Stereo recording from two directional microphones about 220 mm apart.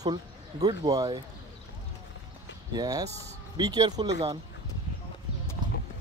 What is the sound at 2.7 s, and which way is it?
Speech, 15° right (ahead or behind).